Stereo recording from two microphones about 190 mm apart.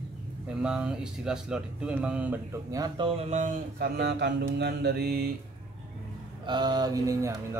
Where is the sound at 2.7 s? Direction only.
20° right (ahead or behind).